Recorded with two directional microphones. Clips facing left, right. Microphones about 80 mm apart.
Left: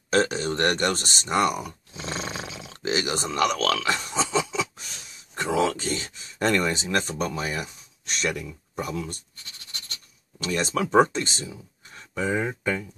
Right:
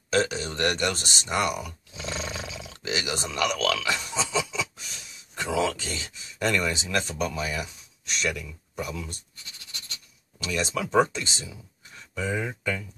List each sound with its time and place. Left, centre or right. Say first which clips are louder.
0.1 s speech: left 3 dB; left
10.4 s speech: left 3 dB; left